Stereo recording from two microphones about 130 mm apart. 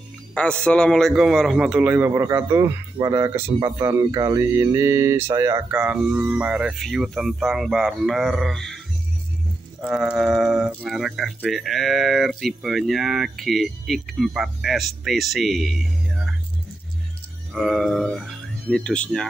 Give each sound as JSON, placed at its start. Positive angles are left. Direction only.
{"t": 0.3, "sound": "speech", "side_deg": 10}
{"t": 5.7, "sound": "speech", "side_deg": -10}
{"t": 9.9, "sound": "speech", "side_deg": -5}
{"t": 17.5, "sound": "speech", "side_deg": 0}